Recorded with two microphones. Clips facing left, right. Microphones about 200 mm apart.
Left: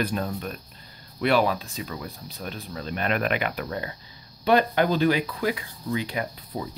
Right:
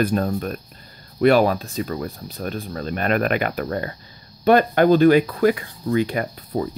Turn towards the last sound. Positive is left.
turn(degrees=-50)  # may be behind; listen again after turning